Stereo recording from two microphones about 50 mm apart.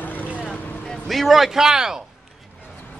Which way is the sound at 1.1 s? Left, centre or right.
Centre.